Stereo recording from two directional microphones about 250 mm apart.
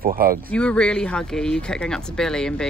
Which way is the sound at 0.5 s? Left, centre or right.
Centre.